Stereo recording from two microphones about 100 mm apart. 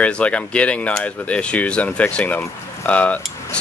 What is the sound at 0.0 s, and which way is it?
Speech, 10° left (ahead or behind).